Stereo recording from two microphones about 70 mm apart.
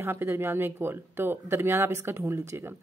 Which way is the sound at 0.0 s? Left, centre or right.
Right.